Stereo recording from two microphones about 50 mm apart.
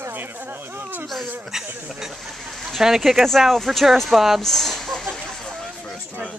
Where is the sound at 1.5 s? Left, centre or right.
Centre.